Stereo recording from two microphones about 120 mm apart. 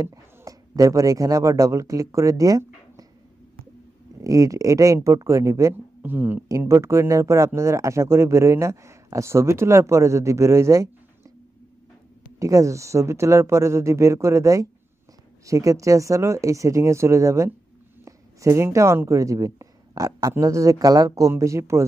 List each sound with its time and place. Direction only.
0.0 s speech: 25° right (ahead or behind)
4.2 s speech: 30° right (ahead or behind)
12.4 s speech: 25° right (ahead or behind)